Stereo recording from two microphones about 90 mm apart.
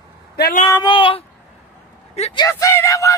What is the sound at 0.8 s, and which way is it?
Speech, 75° left (ahead or behind).